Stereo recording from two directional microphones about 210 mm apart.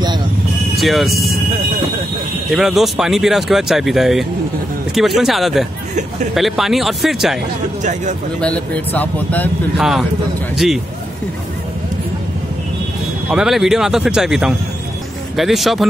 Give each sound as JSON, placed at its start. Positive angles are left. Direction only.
{"t": 0.7, "sound": "speech", "side_deg": 0}
{"t": 2.5, "sound": "speech", "side_deg": 0}
{"t": 7.8, "sound": "speech", "side_deg": -35}
{"t": 8.4, "sound": "speech", "side_deg": 5}
{"t": 13.3, "sound": "speech", "side_deg": 0}